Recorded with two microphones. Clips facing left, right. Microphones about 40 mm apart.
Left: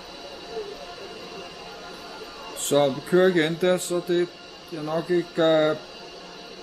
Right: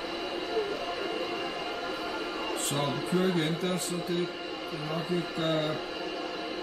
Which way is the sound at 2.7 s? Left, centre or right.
Left.